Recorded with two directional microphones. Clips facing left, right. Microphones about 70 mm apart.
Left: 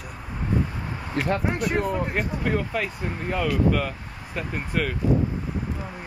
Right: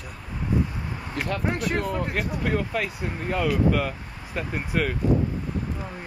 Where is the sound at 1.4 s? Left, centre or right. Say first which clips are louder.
Left 1 dB; centre.